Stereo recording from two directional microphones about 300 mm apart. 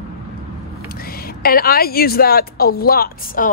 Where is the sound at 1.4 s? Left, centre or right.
Left.